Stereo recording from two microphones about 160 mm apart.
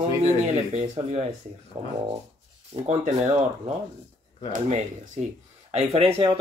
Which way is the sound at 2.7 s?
45° right (ahead or behind).